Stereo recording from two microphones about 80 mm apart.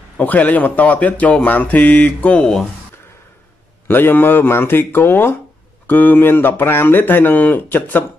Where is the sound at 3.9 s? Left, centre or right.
Left.